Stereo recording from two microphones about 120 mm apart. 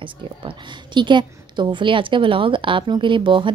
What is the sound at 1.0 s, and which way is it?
A woman's voice, 40° right (ahead or behind).